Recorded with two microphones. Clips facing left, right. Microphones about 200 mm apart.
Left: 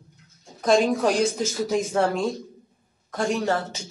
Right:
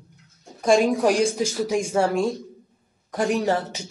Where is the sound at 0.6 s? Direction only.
10° right (ahead or behind).